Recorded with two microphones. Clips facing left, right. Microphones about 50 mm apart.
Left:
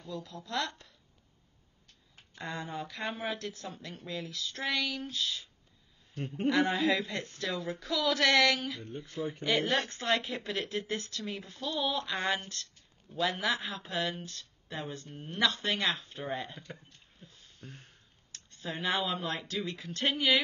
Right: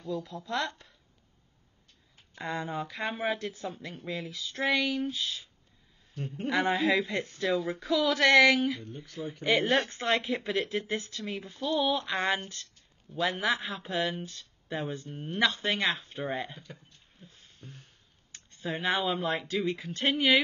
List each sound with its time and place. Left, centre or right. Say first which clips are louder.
0.1 s speech: right 4 dB; centre
2.3 s speech: right 4 dB; centre
4.3 s speech: right 6 dB; centre
6.1 s speech: left 3 dB; left
6.5 s speech: right 2 dB; centre
8.8 s speech: left 2 dB; left
9.4 s a woman's voice: right 4 dB; right
13.5 s speech: right 3 dB; centre
13.8 s a woman's voice: right 4 dB; right
16.7 s a sound: even; centre
17.6 s a sound: left 1 dB; left
18.3 s a woman's voice: right 4 dB; centre